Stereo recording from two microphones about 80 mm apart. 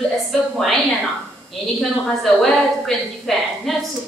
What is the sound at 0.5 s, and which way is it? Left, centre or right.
Speech, centre.